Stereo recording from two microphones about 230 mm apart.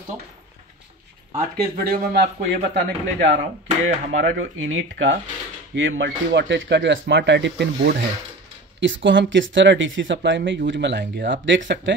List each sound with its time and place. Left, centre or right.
1.3 s speech: right